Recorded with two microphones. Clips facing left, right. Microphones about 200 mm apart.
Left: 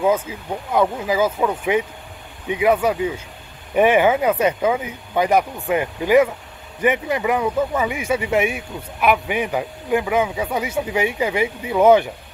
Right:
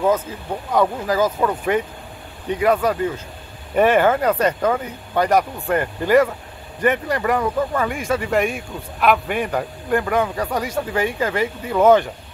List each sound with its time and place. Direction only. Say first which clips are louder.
0.0 s speech: even; 10° left (ahead or behind)